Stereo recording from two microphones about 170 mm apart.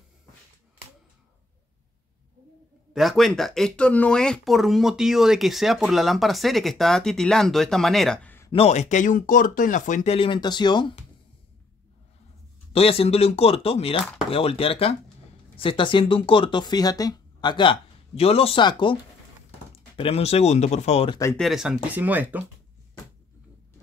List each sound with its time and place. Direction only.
2.9 s speech: centre (ahead or behind)
8.5 s speech: 35° left (ahead or behind)
10.1 s speech: 30° left (ahead or behind)
12.7 s speech: 35° left (ahead or behind)
20.0 s speech: 35° left (ahead or behind)
21.4 s speech: centre (ahead or behind)